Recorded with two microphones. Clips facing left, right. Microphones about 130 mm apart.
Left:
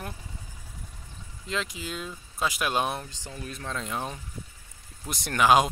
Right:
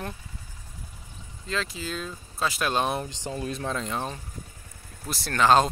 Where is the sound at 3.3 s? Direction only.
30° right (ahead or behind).